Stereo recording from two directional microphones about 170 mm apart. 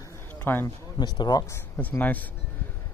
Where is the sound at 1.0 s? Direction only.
25° left (ahead or behind).